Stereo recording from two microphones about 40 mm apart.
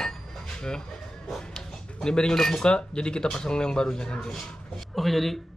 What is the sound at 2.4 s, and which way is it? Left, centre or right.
Speech, centre.